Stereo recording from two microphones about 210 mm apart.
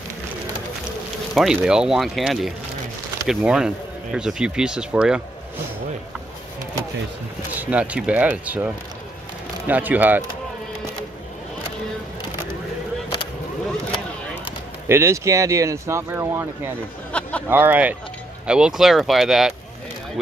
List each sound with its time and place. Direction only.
1.3 s speech: centre (ahead or behind)
7.5 s speech: 5° right (ahead or behind)
14.4 s speech: 10° right (ahead or behind)
17.1 s a sound: 5° left (ahead or behind)
17.5 s speech: 10° right (ahead or behind)